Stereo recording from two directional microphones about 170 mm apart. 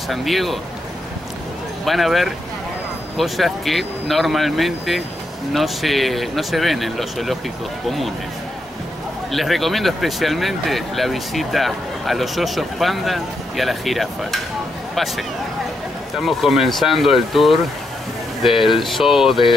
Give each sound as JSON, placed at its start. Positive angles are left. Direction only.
{"t": 0.1, "sound": "speech", "side_deg": 0}
{"t": 1.9, "sound": "speech", "side_deg": 0}
{"t": 9.3, "sound": "speech", "side_deg": 0}
{"t": 16.2, "sound": "speech", "side_deg": 0}